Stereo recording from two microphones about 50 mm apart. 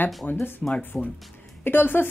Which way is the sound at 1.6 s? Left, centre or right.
Left.